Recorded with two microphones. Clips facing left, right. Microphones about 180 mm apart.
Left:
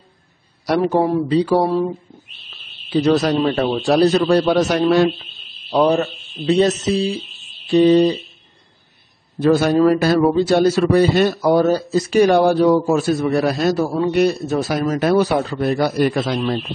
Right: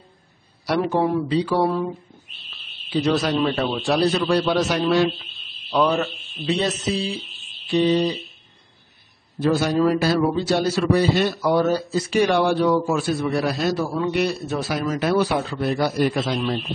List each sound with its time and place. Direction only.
0.7 s a man's voice: 40° left (ahead or behind)
2.9 s a man's voice: 45° left (ahead or behind)
5.7 s a man's voice: 35° left (ahead or behind)
9.4 s a man's voice: 55° left (ahead or behind)